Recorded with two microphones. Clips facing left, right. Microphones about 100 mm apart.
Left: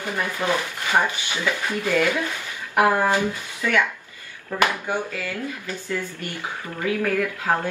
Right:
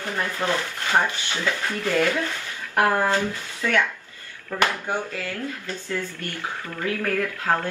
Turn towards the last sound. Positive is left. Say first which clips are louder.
# left 1 dB
turn(degrees=15)  # may be behind; listen again after turning